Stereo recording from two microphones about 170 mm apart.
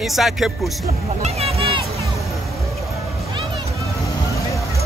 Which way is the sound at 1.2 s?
35° right (ahead or behind).